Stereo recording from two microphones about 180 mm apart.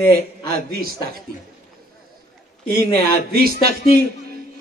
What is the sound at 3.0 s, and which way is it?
Speech, 55° right (ahead or behind).